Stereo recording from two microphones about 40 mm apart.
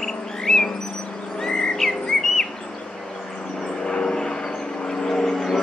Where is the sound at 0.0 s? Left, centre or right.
Centre.